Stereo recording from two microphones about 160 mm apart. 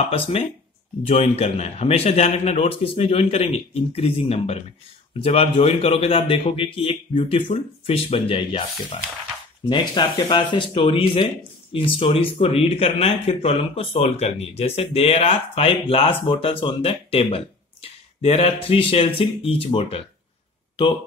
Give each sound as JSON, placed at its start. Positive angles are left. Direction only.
{"t": 0.1, "sound": "speech", "side_deg": 40}
{"t": 9.7, "sound": "speech", "side_deg": 25}